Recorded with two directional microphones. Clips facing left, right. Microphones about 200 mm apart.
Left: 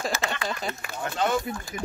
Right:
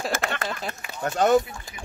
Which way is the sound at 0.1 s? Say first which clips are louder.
Right 2 dB; 55° right (ahead or behind).